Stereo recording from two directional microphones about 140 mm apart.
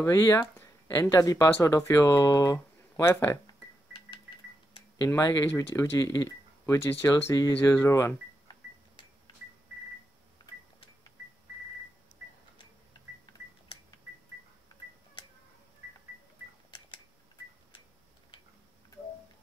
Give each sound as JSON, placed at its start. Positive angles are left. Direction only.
{"t": 0.0, "sound": "speech", "side_deg": 20}
{"t": 5.0, "sound": "speech", "side_deg": 25}